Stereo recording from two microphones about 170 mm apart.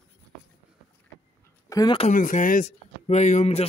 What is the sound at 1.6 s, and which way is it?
Speech, 20° left (ahead or behind).